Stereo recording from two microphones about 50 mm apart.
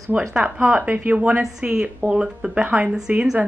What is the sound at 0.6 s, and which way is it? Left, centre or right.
Speech, right.